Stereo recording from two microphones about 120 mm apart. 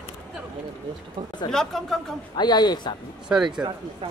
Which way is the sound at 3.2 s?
5° right (ahead or behind).